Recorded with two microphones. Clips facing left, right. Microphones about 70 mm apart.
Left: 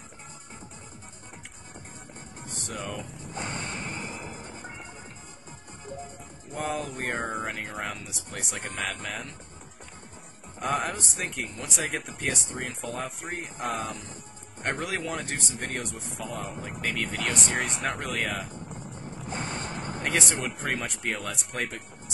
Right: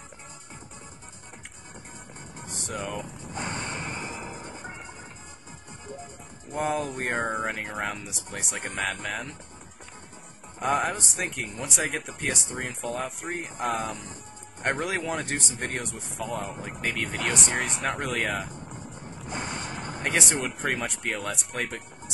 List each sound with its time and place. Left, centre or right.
2.4 s music: centre
2.8 s speech: centre
3.7 s music: centre
4.0 s music: centre
6.5 s speech: centre
10.6 s speech: centre
18.7 s music: centre
19.7 s speech: centre